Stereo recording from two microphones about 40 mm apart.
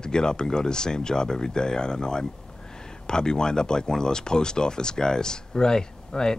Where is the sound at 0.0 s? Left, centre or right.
Centre.